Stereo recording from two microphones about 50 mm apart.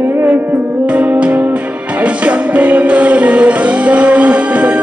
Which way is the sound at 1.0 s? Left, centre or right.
Right.